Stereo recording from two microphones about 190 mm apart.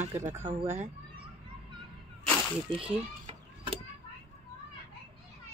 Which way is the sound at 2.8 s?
30° right (ahead or behind).